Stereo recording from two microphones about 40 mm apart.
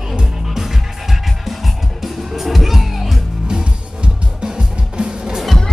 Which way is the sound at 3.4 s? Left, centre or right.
Right.